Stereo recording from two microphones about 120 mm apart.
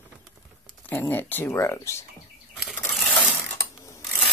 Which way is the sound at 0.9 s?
15° left (ahead or behind).